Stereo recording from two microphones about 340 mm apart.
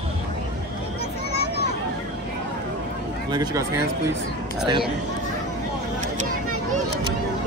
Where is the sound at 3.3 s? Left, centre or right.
Centre.